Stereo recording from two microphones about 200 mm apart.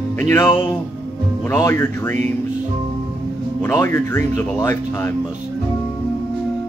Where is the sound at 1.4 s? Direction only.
15° left (ahead or behind).